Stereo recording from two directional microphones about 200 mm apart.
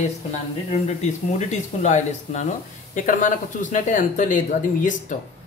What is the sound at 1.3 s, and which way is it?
Speech, 35° left (ahead or behind).